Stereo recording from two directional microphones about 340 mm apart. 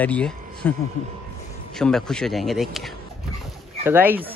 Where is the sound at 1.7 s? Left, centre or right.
Centre.